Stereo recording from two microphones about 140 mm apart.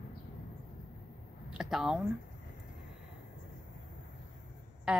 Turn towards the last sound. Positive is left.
turn(degrees=-5)  # may be behind; listen again after turning